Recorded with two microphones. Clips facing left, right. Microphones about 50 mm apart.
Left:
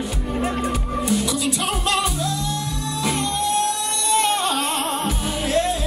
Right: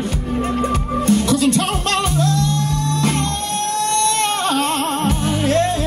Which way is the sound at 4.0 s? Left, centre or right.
Right.